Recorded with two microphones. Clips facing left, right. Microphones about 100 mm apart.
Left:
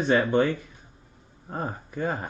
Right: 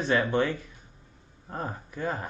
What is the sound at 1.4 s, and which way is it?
Speech, 25° left (ahead or behind).